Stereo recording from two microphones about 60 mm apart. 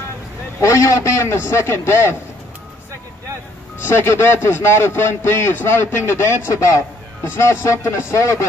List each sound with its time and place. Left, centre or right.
0.6 s a man's voice: left
3.8 s a man's voice: left
6.4 s a man's voice: left